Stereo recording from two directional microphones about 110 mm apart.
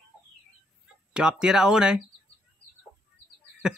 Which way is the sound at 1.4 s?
5° right (ahead or behind).